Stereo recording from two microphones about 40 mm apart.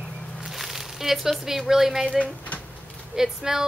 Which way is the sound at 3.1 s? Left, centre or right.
Centre.